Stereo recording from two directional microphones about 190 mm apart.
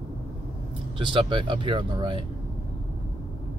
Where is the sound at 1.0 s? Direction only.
25° right (ahead or behind).